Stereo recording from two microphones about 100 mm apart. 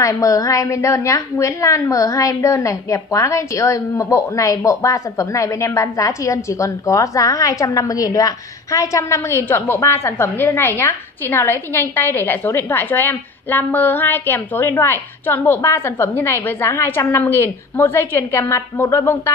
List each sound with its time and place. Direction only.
0.0 s a woman's voice: 35° left (ahead or behind)